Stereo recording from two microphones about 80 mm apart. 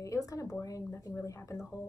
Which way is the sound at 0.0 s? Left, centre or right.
Left.